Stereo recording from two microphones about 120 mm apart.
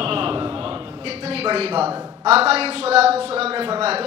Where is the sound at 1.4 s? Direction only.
50° right (ahead or behind).